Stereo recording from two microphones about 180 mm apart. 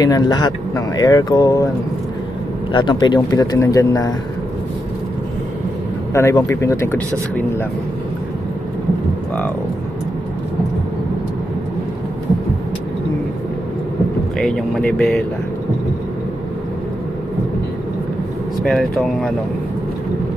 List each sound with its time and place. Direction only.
0.0 s speech: 20° left (ahead or behind)
2.7 s speech: 25° left (ahead or behind)
6.1 s speech: 15° left (ahead or behind)
14.4 s speech: 5° left (ahead or behind)
18.6 s speech: centre (ahead or behind)